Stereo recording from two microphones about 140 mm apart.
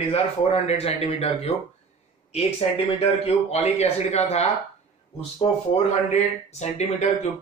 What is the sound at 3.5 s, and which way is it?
Speech, 50° left (ahead or behind).